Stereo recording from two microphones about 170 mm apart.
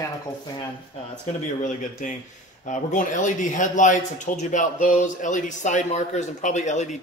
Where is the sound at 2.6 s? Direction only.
50° left (ahead or behind).